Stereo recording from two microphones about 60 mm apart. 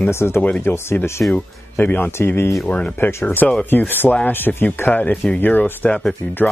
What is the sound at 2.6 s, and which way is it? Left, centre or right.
Speech, left.